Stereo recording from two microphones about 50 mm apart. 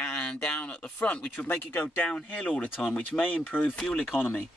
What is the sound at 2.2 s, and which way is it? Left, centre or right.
Speech, left.